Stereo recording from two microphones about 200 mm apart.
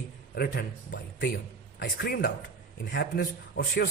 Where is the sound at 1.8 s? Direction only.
65° left (ahead or behind).